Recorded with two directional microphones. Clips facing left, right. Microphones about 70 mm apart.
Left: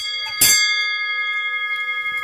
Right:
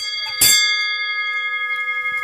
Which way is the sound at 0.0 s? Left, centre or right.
Centre.